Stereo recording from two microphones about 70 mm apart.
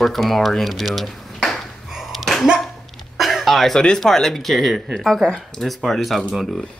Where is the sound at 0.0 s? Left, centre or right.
Centre.